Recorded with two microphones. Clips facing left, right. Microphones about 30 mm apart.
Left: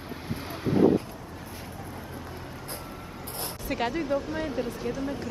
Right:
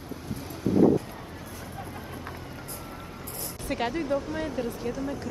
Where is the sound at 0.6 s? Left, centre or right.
Left.